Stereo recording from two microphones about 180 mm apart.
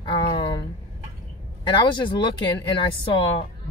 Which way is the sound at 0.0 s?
30° left (ahead or behind).